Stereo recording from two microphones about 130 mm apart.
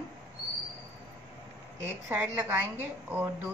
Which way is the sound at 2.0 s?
15° right (ahead or behind).